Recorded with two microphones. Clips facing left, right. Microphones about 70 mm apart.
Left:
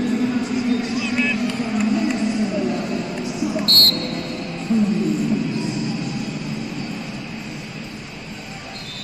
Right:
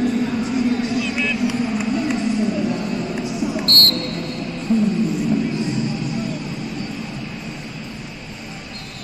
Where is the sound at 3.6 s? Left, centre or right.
Right.